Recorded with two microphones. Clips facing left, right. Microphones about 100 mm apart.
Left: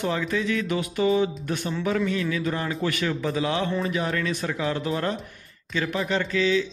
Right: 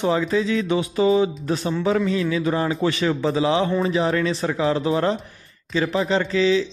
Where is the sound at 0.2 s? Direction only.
30° right (ahead or behind).